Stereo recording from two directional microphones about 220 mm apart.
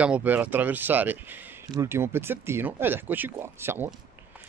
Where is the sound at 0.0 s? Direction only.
5° right (ahead or behind).